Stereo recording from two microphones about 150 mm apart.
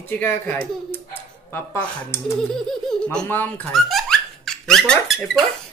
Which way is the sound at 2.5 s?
5° left (ahead or behind).